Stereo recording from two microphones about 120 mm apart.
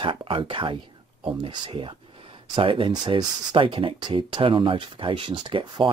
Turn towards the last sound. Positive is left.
turn(degrees=-45)  # may be behind; listen again after turning